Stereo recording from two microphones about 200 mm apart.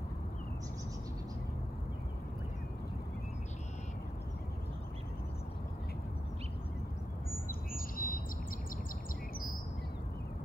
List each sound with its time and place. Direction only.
7.4 s bird: 45° left (ahead or behind)